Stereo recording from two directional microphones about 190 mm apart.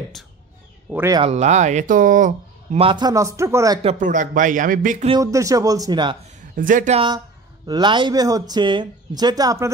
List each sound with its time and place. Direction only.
1.2 s speech: 35° right (ahead or behind)
2.8 s speech: 25° right (ahead or behind)
4.0 s a man's voice: 45° right (ahead or behind)
5.2 s speech: 15° right (ahead or behind)
6.5 s a man's voice: 45° right (ahead or behind)
7.6 s speech: 25° right (ahead or behind)